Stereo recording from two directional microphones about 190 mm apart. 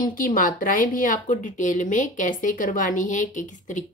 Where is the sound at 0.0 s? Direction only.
45° left (ahead or behind).